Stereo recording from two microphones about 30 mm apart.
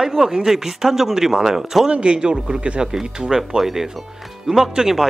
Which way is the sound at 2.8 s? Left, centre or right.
Right.